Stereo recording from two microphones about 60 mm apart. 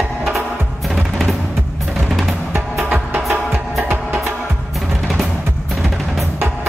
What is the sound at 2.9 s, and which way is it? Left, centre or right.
Music, right.